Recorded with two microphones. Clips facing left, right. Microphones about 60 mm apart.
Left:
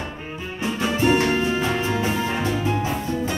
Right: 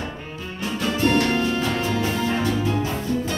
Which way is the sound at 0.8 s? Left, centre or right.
Centre.